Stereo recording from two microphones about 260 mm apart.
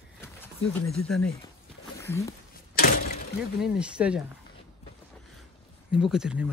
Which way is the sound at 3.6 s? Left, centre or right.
Centre.